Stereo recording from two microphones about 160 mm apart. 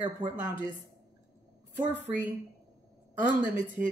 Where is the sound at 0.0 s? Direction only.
50° right (ahead or behind).